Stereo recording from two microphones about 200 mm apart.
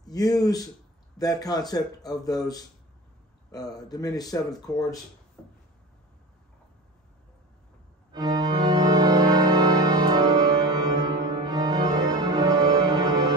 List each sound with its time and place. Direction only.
0.0 s speech: 20° left (ahead or behind)
5.4 s a sound: 5° left (ahead or behind)
8.1 s organ: 20° right (ahead or behind)